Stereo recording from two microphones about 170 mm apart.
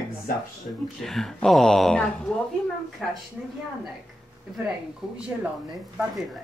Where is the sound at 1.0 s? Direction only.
Centre (ahead or behind).